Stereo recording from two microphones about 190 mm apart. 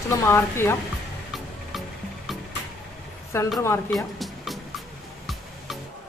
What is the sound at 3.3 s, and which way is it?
Speech, 15° left (ahead or behind).